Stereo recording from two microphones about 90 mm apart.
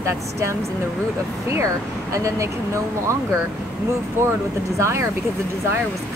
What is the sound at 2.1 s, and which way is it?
Speech, 35° right (ahead or behind).